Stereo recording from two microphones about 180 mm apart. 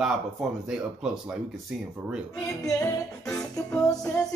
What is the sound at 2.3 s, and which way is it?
Music, 15° left (ahead or behind).